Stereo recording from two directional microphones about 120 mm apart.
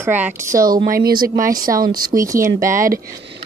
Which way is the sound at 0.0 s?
15° right (ahead or behind).